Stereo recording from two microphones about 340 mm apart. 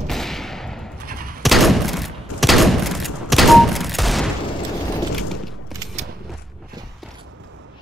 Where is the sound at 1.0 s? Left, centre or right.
Right.